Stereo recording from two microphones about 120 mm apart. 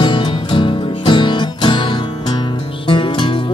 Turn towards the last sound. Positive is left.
turn(degrees=45)  # may be behind; listen again after turning